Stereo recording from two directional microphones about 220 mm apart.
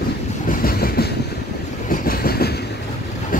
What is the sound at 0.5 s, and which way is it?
Train, 40° left (ahead or behind).